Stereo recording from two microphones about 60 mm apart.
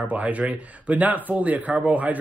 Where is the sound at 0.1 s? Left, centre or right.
Right.